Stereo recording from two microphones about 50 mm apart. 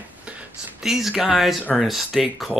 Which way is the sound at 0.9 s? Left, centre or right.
Centre.